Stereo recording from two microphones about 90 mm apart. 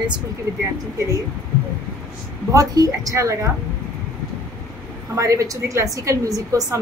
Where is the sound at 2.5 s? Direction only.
40° right (ahead or behind).